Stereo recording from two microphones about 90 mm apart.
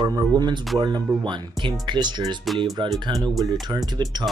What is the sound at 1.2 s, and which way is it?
Speech, 60° right (ahead or behind).